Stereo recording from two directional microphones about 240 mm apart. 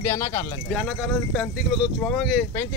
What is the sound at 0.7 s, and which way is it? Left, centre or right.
Speech, centre.